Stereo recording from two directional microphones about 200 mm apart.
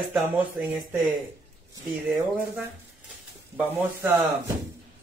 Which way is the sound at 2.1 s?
10° right (ahead or behind).